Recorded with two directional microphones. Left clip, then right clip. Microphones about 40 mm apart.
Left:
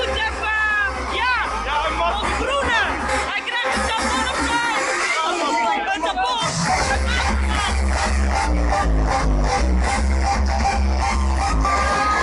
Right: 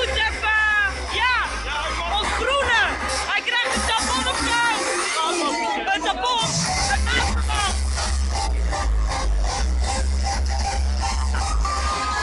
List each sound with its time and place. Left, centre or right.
0.0 s music: centre
1.7 s music: left
2.1 s a sound: centre
3.3 s music: centre
5.9 s music: centre